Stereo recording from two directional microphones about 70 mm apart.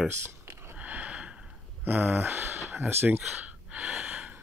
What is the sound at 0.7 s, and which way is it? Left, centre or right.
Sniff, right.